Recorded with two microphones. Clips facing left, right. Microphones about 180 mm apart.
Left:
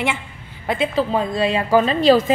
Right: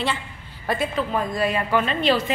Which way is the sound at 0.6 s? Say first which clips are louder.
Left 3 dB; 20° left (ahead or behind).